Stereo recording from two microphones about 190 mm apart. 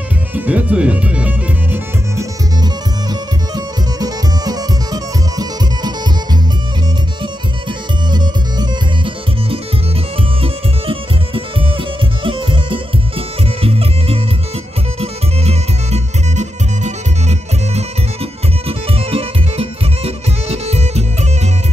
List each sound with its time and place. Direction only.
0.3 s music: 10° right (ahead or behind)
2.6 s music: 20° right (ahead or behind)
8.1 s music: 25° right (ahead or behind)